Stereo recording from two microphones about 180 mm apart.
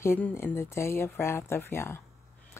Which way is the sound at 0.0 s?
15° left (ahead or behind).